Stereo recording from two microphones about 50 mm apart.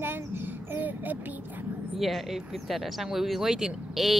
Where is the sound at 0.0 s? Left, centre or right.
Right.